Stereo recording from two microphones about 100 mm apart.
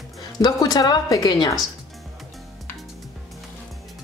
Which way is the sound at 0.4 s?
40° left (ahead or behind).